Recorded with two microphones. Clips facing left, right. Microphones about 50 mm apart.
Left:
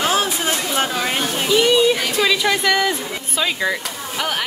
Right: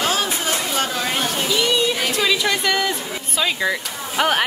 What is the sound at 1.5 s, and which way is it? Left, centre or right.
Speech, centre.